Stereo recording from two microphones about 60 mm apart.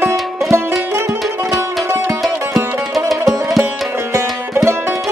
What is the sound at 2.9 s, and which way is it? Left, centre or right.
Music, centre.